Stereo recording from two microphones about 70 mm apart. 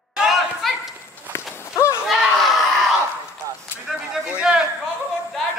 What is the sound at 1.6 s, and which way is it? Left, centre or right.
Run, left.